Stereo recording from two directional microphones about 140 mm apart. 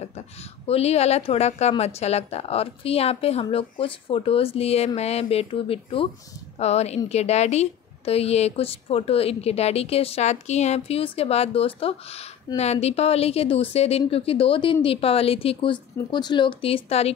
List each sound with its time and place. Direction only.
0.7 s speech: 50° left (ahead or behind)
6.6 s speech: 50° left (ahead or behind)